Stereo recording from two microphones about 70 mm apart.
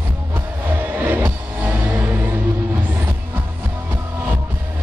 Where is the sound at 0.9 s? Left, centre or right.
Right.